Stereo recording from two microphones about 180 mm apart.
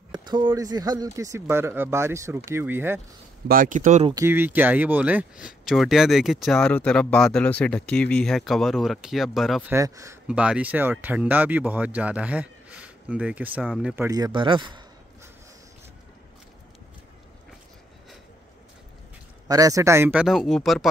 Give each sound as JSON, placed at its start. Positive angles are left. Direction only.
{"t": 0.1, "sound": "speech", "side_deg": -25}
{"t": 3.4, "sound": "speech", "side_deg": -50}
{"t": 4.1, "sound": "speech", "side_deg": -15}
{"t": 9.7, "sound": "speech", "side_deg": -15}
{"t": 10.2, "sound": "speech", "side_deg": -5}
{"t": 13.9, "sound": "speech", "side_deg": -15}
{"t": 19.4, "sound": "speech", "side_deg": -20}